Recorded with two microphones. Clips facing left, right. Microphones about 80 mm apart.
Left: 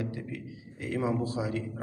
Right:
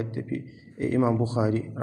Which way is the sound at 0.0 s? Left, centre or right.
Right.